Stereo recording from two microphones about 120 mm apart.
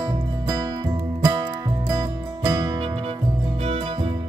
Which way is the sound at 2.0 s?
30° right (ahead or behind).